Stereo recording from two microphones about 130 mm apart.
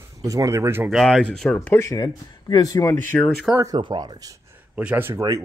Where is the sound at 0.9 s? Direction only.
Centre (ahead or behind).